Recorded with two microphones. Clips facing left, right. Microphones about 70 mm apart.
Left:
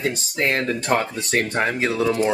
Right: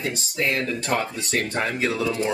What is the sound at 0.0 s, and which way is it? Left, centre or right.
Speech, left.